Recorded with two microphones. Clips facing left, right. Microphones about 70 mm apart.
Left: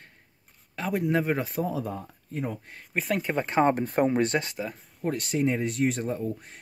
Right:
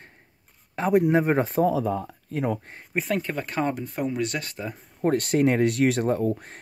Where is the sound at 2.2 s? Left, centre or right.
Right.